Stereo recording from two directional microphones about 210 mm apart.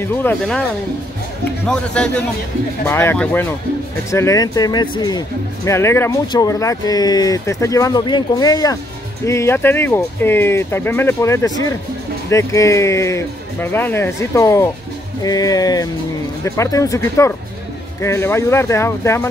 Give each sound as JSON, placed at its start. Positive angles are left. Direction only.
{"t": 0.0, "sound": "speech", "side_deg": 10}
{"t": 1.7, "sound": "speech", "side_deg": 5}